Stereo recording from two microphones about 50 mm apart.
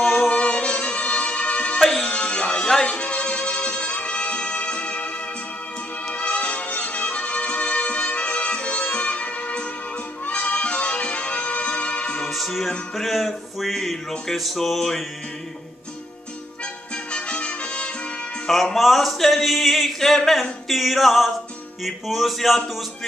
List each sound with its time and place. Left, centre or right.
0.3 s music: left
12.3 s music: centre
12.9 s speech: centre
14.3 s a sound: centre
16.9 s music: left
18.5 s a sound: centre